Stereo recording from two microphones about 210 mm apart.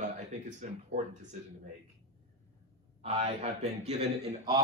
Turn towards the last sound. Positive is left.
turn(degrees=-30)  # may be behind; listen again after turning